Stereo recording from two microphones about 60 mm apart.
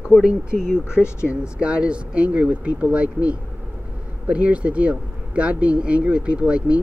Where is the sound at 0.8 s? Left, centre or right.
Left.